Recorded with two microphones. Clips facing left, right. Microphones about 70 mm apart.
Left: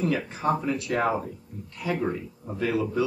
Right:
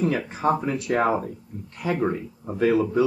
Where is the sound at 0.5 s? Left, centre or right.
Right.